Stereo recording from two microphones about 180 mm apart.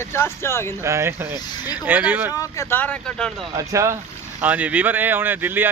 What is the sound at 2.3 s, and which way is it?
Speech, 15° left (ahead or behind).